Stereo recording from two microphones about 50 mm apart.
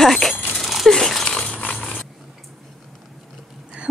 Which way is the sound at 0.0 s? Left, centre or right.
Centre.